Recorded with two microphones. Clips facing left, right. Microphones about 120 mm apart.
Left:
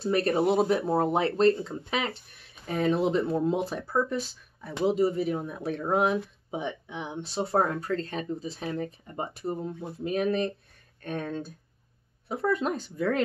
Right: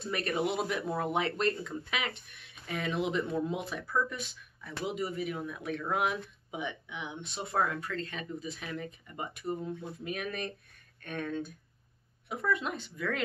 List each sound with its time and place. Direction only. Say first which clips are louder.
0.0 s speech: left 8 dB; 35° left (ahead or behind)